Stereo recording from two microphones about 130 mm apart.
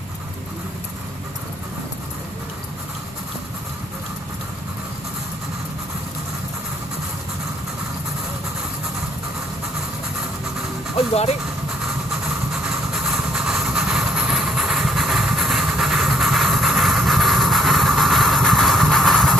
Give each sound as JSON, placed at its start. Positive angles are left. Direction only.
{"t": 11.0, "sound": "speech", "side_deg": 50}
{"t": 12.6, "sound": "vehicle", "side_deg": -5}